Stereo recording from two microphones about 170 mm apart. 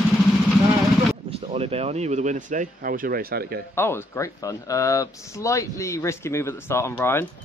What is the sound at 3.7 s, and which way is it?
A man's voice, 15° left (ahead or behind).